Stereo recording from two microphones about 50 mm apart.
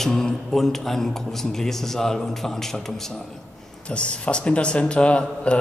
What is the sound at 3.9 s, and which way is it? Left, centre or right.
Speech, left.